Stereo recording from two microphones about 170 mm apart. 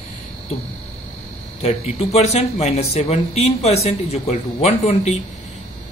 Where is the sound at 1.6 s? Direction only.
35° left (ahead or behind).